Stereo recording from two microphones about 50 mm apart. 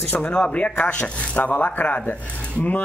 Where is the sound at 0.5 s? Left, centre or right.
Left.